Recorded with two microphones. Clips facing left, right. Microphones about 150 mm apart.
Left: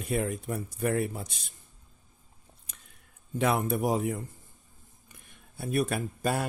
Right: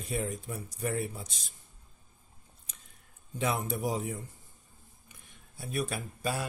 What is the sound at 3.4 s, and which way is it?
Speech, 60° left (ahead or behind).